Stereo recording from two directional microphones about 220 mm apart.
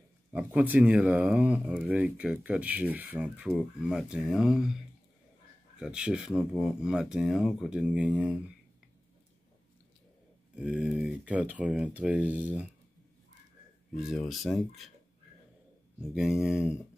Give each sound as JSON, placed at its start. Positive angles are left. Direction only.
{"t": 0.3, "sound": "speech", "side_deg": -5}
{"t": 5.8, "sound": "speech", "side_deg": -5}
{"t": 10.5, "sound": "speech", "side_deg": -5}
{"t": 13.9, "sound": "speech", "side_deg": 0}
{"t": 16.0, "sound": "speech", "side_deg": -5}